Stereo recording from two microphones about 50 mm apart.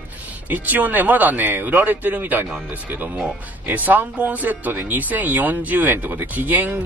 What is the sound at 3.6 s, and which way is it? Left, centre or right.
Speech, right.